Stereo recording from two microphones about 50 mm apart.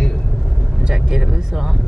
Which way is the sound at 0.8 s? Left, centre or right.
Centre.